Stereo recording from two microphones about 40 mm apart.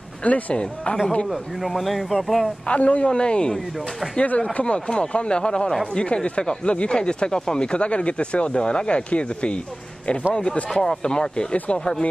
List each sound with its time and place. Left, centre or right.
0.2 s speech: left
1.6 s speech: centre
2.7 s speech: left
3.1 s speech: left
4.2 s speech: left
10.7 s speech: centre